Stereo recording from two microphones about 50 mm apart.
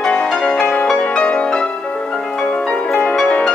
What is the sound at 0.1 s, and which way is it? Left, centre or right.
Music, centre.